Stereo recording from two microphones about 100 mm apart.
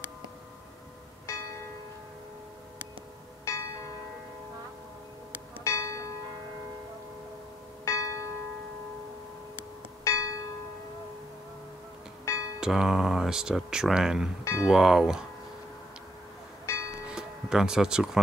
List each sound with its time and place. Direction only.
1.2 s church bell: 30° left (ahead or behind)
3.4 s church bell: 30° left (ahead or behind)
5.6 s church bell: 30° left (ahead or behind)
7.8 s church bell: 30° left (ahead or behind)
10.0 s church bell: 35° left (ahead or behind)
12.5 s speech: 5° right (ahead or behind)
14.4 s speech: 30° left (ahead or behind)
14.7 s speech: 5° right (ahead or behind)
16.6 s church bell: 30° left (ahead or behind)
17.1 s tick-tock: 5° right (ahead or behind)